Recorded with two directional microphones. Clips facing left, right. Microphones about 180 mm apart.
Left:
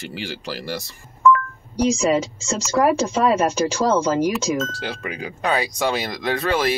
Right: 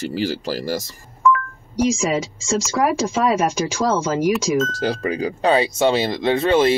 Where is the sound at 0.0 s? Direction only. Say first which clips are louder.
Right 8 dB; 40° right (ahead or behind).